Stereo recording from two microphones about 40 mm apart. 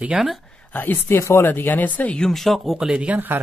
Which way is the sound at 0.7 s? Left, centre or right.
Left.